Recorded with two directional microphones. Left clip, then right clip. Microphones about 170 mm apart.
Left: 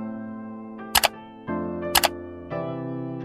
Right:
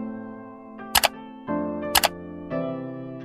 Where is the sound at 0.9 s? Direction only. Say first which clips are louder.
Even; centre (ahead or behind).